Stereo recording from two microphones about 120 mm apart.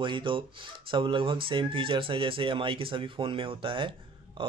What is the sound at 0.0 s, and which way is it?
Speech, 45° right (ahead or behind).